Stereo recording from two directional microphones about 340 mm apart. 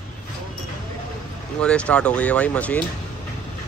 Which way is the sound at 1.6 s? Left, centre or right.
Centre.